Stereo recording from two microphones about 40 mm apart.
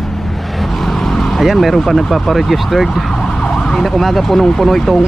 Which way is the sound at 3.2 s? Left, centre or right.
Centre.